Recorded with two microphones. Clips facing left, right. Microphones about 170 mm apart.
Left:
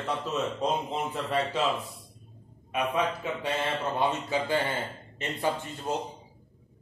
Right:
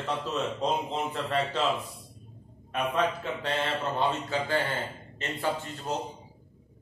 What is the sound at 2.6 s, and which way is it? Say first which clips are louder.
A man's voice: even; 5° left (ahead or behind).